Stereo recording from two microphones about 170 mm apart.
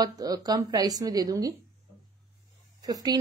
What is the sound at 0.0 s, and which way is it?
Speech, 20° right (ahead or behind).